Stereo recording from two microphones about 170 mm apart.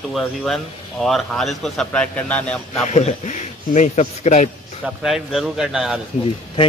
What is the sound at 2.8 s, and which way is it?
A man's voice, 40° left (ahead or behind).